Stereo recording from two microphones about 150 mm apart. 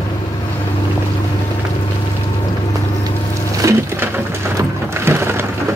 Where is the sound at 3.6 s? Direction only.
20° right (ahead or behind).